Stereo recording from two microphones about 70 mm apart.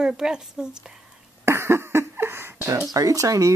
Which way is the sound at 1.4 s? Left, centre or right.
Right.